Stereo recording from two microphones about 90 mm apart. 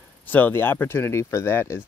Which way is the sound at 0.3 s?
20° left (ahead or behind).